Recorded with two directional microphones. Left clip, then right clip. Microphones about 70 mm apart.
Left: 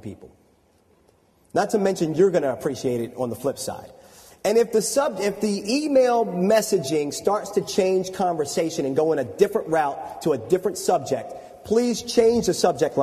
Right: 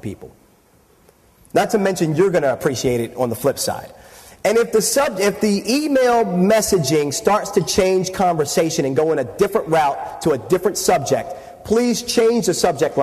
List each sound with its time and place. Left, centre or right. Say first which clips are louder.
1.7 s a man's voice: right 4 dB; right
2.5 s a man's voice: right 6 dB; right
4.4 s a man's voice: right 4 dB; right
9.5 s a man's voice: right 6 dB; right